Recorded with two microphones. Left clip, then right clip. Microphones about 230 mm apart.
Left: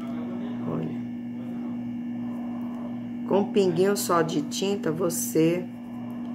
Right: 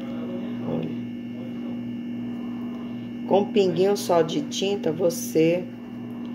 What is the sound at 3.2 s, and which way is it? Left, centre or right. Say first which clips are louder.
Speech: right 3 dB; left.